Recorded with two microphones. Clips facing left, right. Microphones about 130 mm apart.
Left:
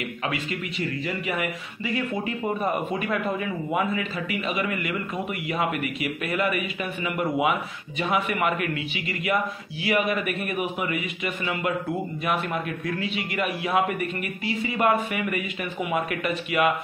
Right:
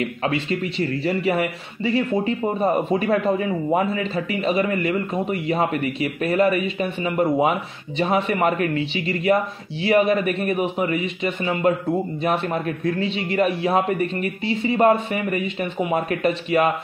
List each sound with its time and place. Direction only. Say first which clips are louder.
0.0 s a man's voice: right 6 dB; 30° right (ahead or behind)